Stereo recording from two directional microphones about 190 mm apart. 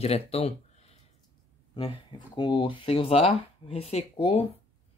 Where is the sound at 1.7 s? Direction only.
25° left (ahead or behind).